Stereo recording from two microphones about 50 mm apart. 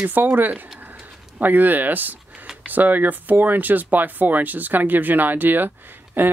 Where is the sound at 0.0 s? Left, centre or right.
Right.